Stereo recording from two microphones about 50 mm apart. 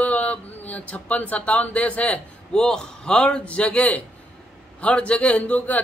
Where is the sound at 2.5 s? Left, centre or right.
Centre.